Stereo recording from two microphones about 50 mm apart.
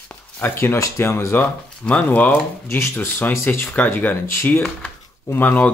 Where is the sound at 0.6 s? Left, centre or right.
Left.